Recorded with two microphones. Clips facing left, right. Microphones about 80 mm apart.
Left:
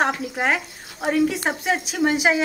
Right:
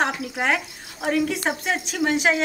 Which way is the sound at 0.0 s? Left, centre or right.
Centre.